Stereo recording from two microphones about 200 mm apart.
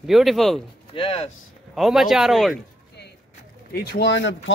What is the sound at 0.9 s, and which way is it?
Speech, 25° left (ahead or behind).